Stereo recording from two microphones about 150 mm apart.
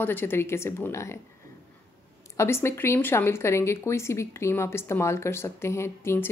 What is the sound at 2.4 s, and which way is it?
A woman's voice, 15° left (ahead or behind).